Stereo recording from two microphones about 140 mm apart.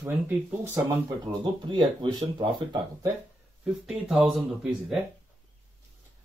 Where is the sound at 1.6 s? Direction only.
35° right (ahead or behind).